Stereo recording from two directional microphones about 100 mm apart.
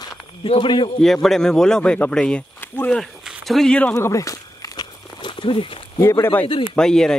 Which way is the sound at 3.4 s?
5° left (ahead or behind).